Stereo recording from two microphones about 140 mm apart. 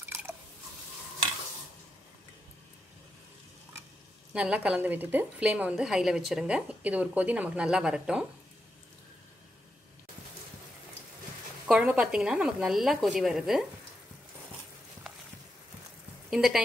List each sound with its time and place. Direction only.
4.3 s a woman's voice: 10° right (ahead or behind)
11.6 s a woman's voice: 5° right (ahead or behind)
16.3 s speech: 5° right (ahead or behind)